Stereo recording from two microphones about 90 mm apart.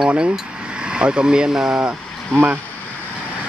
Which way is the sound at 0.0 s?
10° right (ahead or behind).